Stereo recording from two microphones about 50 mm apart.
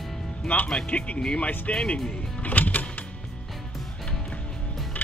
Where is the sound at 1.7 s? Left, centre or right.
Centre.